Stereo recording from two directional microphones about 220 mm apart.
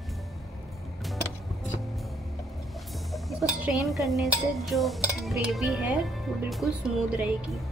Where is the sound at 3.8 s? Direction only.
Centre (ahead or behind).